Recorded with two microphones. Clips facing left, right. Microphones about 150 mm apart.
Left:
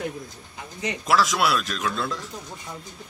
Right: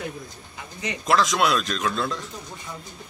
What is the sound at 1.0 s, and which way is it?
A man's voice, 5° left (ahead or behind).